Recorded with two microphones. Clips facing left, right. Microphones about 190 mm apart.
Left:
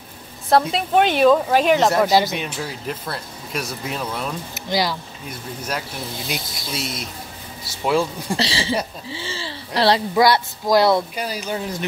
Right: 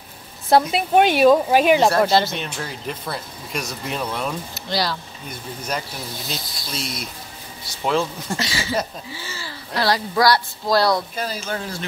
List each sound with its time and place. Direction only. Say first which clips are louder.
0.5 s speech: right 1 dB; 10° right (ahead or behind)
2.0 s speech: left 1 dB; 15° left (ahead or behind)
4.6 s speech: left 3 dB; 15° left (ahead or behind)
5.3 s speech: even; 5° left (ahead or behind)
6.3 s speech: left 3 dB; 15° left (ahead or behind)
6.8 s speech: left 1 dB; centre (ahead or behind)
8.4 s speech: left 2 dB; 30° left (ahead or behind)